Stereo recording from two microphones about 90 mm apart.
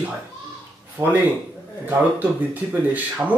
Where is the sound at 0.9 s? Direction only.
20° right (ahead or behind).